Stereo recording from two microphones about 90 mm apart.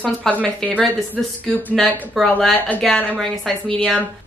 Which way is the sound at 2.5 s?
20° left (ahead or behind).